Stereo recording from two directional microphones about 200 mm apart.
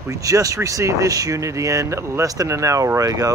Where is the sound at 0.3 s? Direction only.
15° right (ahead or behind).